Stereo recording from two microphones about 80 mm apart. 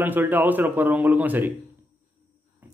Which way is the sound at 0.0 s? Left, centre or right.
Right.